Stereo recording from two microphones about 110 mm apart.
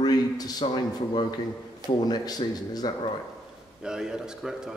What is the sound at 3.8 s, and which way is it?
Speech, 5° right (ahead or behind).